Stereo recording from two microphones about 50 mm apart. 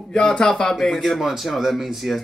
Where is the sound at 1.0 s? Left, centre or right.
Centre.